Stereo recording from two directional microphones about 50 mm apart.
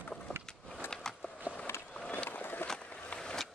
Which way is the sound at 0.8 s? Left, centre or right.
Left.